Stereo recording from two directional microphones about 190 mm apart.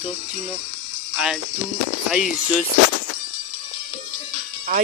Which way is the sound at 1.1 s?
5° right (ahead or behind).